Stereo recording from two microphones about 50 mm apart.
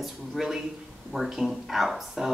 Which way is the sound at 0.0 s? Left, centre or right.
Centre.